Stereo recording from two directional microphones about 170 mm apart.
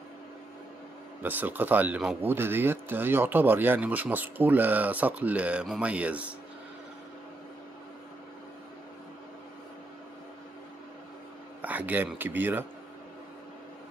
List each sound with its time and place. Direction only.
1.2 s speech: 10° right (ahead or behind)
11.6 s speech: 10° right (ahead or behind)